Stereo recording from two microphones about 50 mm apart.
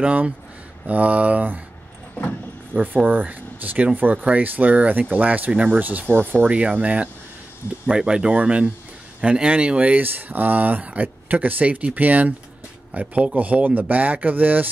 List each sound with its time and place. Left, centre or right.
0.0 s speech: right
2.7 s speech: right